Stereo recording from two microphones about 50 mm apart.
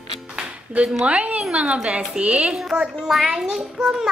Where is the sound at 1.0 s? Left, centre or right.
Right.